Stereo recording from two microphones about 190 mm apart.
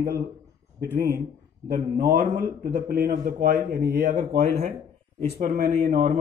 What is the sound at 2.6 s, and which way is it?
Speech, 45° right (ahead or behind).